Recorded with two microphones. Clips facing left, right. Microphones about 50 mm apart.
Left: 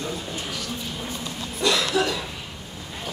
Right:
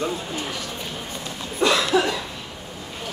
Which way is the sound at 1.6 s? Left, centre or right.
Right.